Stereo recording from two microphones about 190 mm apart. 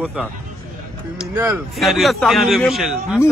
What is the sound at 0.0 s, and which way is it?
Speech, 5° left (ahead or behind).